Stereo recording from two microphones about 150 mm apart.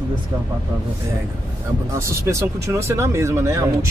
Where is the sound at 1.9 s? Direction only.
20° right (ahead or behind).